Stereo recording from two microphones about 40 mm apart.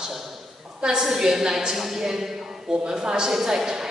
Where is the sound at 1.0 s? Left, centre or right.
Centre.